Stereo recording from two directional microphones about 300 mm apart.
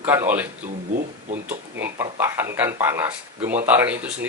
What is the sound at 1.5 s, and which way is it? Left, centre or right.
A man's voice, centre.